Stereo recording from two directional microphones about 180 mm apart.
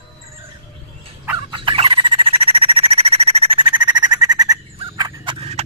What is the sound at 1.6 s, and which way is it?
Squeal, 30° right (ahead or behind).